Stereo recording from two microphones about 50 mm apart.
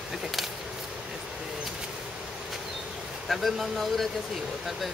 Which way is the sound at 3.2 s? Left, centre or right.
Centre.